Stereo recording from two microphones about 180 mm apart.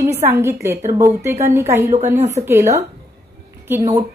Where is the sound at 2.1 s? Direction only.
40° right (ahead or behind).